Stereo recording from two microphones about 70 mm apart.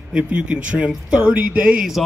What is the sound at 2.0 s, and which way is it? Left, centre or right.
Speech, centre.